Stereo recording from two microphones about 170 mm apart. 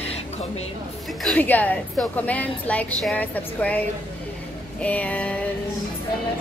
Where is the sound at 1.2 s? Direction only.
10° left (ahead or behind).